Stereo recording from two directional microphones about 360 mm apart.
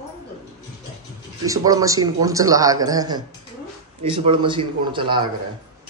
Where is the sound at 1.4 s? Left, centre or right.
Centre.